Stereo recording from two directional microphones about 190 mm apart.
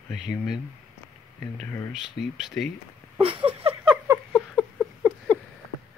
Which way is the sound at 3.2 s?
30° right (ahead or behind).